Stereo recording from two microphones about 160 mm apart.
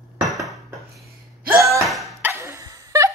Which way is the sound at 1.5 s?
20° right (ahead or behind).